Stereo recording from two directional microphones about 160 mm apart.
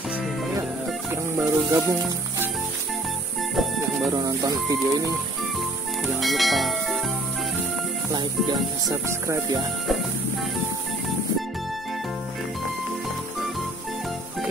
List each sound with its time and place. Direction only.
1.1 s music: 15° right (ahead or behind)
4.1 s speech: 25° right (ahead or behind)
6.2 s speech: centre (ahead or behind)
8.1 s speech: 25° right (ahead or behind)